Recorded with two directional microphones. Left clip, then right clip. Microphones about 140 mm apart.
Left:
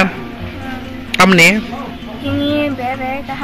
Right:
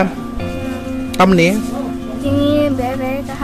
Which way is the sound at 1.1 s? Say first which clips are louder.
Left 4 dB; 10° right (ahead or behind).